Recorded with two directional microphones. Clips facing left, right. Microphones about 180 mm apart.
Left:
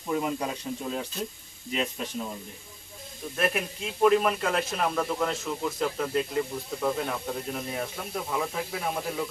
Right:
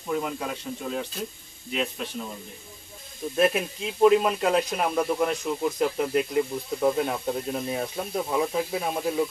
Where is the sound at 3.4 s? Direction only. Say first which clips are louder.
Right 5 dB; 20° right (ahead or behind).